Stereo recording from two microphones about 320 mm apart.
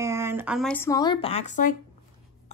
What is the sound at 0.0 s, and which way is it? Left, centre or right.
A woman's voice, centre.